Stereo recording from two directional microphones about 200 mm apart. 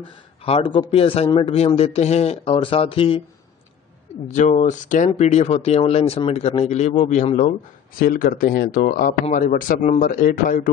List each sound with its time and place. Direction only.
0.4 s a man's voice: 30° left (ahead or behind)
4.3 s speech: 35° left (ahead or behind)